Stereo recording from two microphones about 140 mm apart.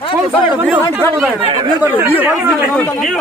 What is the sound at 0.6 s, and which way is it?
Speech, 15° right (ahead or behind).